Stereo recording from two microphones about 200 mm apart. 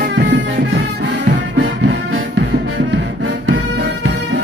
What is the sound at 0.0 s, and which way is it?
Music, 60° right (ahead or behind).